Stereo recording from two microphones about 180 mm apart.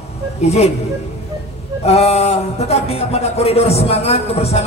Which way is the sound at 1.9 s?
35° left (ahead or behind).